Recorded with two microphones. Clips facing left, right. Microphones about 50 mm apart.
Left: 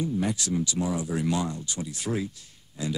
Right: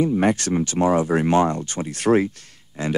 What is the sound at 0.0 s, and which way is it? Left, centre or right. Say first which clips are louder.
Speech: right 9 dB; right.